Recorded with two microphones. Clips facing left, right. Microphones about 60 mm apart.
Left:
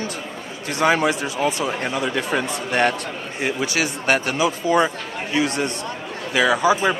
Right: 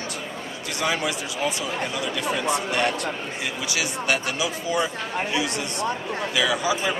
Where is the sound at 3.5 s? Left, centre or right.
Left.